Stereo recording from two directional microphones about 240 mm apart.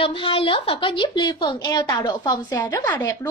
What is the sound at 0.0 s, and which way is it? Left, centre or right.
A woman's voice, left.